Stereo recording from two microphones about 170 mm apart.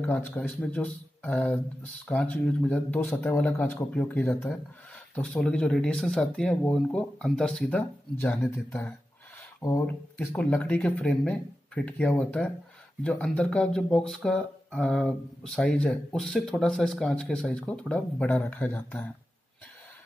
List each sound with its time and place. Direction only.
0.0 s speech: 10° left (ahead or behind)
9.8 s speech: 10° left (ahead or behind)